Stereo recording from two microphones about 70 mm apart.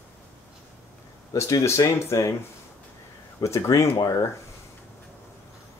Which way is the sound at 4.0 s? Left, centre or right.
Left.